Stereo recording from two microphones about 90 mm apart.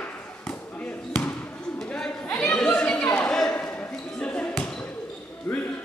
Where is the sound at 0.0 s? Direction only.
15° left (ahead or behind).